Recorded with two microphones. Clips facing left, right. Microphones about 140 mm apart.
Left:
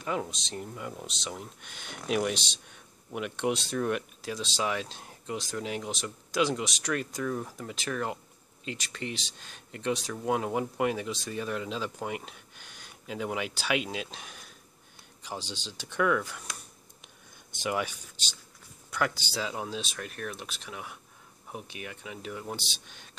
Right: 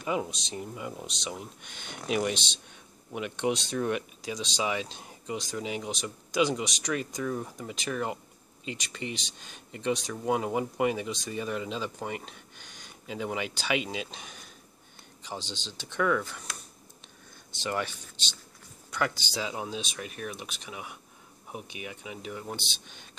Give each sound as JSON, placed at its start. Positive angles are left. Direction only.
{"t": 0.0, "sound": "speech", "side_deg": -5}
{"t": 17.6, "sound": "speech", "side_deg": 10}